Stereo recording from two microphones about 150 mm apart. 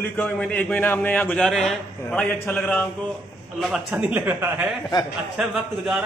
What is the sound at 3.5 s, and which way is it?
A man's voice, 5° right (ahead or behind).